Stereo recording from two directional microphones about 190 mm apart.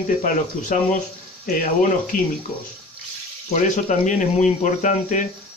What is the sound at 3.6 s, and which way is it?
Speech, 40° left (ahead or behind).